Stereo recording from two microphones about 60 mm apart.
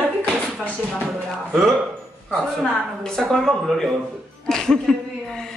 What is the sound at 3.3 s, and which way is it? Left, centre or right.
A woman's voice, centre.